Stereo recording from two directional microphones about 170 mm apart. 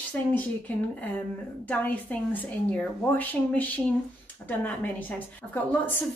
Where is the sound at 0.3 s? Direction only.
10° left (ahead or behind).